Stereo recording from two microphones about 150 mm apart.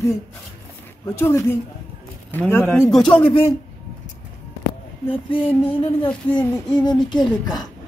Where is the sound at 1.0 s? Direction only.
15° left (ahead or behind).